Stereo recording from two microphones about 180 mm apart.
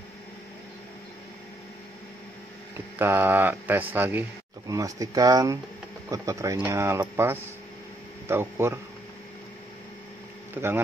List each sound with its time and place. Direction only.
3.0 s speech: 10° right (ahead or behind)
10.5 s speech: 10° right (ahead or behind)